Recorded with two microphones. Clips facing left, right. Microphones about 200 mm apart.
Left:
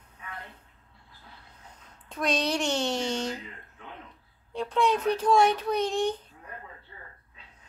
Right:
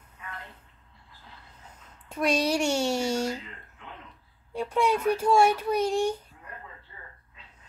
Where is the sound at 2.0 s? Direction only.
10° right (ahead or behind).